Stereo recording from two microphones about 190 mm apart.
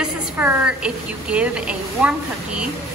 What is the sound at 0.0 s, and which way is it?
A woman's voice, 5° right (ahead or behind).